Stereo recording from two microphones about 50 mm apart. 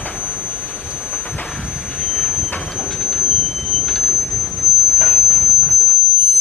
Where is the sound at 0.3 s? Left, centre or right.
Centre.